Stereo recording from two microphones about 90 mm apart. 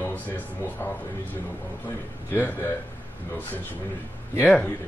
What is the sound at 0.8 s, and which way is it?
Speech, 30° left (ahead or behind).